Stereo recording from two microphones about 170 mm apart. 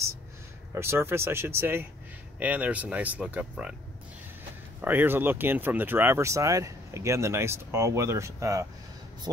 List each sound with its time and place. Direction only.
0.7 s speech: 15° right (ahead or behind)
4.8 s speech: 10° right (ahead or behind)